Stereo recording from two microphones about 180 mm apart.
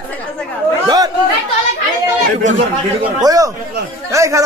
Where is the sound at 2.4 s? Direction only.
40° right (ahead or behind).